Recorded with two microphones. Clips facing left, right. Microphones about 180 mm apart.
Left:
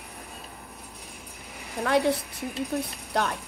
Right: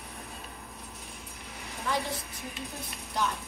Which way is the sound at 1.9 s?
65° left (ahead or behind).